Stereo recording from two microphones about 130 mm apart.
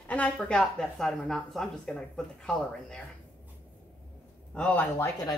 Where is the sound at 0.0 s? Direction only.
10° left (ahead or behind).